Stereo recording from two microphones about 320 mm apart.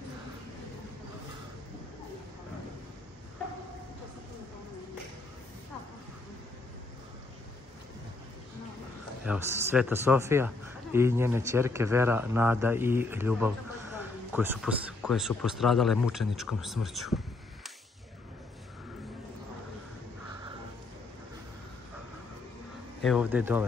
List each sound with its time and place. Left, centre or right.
9.2 s a man's voice: centre
23.0 s speech: centre